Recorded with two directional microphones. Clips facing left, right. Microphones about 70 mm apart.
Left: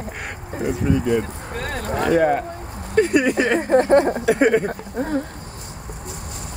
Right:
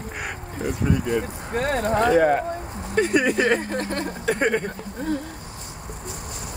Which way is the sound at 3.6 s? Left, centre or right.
Left.